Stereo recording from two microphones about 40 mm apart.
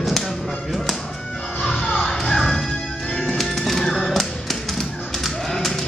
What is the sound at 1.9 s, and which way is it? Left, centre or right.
Music, centre.